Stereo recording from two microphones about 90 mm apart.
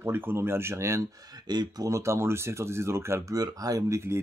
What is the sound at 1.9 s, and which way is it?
Speech, 30° right (ahead or behind).